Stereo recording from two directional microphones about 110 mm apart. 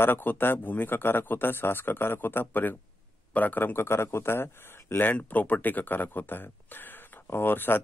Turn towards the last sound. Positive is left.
turn(degrees=20)  # may be behind; listen again after turning